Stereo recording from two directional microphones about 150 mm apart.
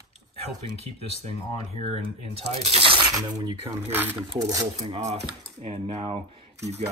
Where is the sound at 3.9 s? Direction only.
15° right (ahead or behind).